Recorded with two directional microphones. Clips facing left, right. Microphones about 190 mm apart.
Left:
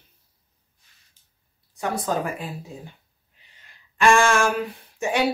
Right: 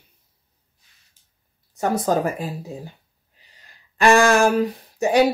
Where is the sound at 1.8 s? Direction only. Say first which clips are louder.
Right 5 dB; 45° right (ahead or behind).